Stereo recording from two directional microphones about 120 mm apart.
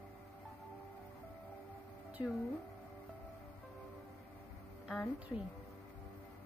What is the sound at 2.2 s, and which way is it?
Speech, 40° left (ahead or behind).